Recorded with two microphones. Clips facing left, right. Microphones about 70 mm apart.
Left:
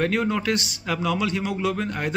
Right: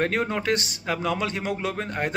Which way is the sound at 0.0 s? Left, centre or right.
Right.